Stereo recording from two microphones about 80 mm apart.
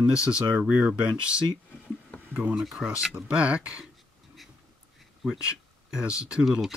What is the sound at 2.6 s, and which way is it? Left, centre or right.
Speech, centre.